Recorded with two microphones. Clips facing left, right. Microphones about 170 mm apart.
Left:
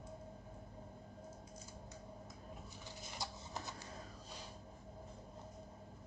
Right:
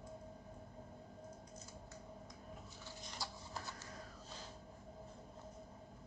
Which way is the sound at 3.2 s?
20° left (ahead or behind).